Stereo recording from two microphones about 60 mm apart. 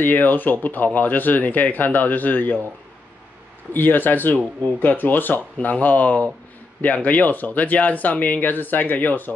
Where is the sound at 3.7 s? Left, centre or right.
Left.